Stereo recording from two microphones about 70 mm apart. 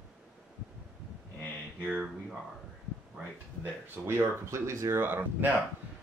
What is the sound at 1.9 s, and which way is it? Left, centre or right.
Speech, centre.